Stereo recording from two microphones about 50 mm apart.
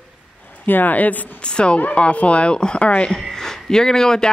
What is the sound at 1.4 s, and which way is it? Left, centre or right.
A woman's voice, centre.